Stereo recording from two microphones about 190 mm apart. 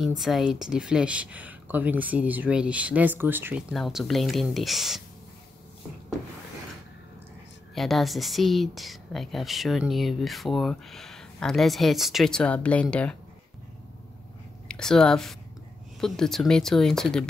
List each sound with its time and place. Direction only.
0.2 s speech: centre (ahead or behind)
3.7 s speech: centre (ahead or behind)
7.7 s speech: centre (ahead or behind)
14.7 s speech: 5° left (ahead or behind)